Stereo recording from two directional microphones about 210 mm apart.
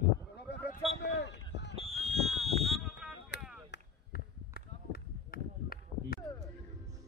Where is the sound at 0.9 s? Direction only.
55° left (ahead or behind).